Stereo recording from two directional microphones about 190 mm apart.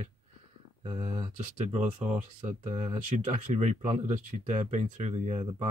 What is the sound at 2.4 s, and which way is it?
Speech, 35° right (ahead or behind).